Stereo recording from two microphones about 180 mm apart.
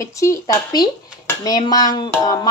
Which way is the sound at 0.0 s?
15° left (ahead or behind).